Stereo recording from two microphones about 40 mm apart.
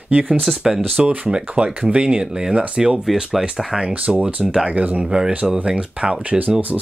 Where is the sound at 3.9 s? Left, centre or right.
Right.